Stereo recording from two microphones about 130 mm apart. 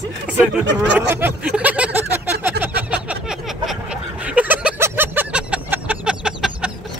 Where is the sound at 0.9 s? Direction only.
15° right (ahead or behind).